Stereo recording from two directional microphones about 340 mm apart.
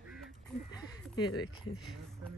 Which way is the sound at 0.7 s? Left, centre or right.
Centre.